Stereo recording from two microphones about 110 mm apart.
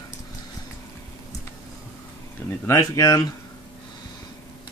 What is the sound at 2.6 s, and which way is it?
Speech, 30° left (ahead or behind).